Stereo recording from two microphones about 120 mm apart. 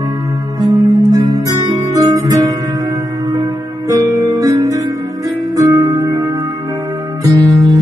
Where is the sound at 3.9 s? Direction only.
30° right (ahead or behind).